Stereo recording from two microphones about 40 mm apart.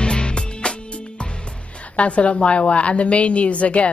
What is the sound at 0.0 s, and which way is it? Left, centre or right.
Music, left.